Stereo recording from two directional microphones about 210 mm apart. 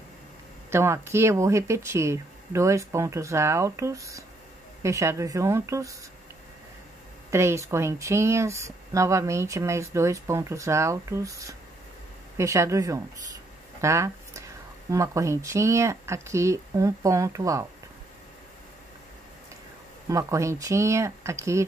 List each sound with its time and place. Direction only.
0.7 s speech: 10° right (ahead or behind)
7.2 s speech: 15° right (ahead or behind)
20.1 s speech: 15° right (ahead or behind)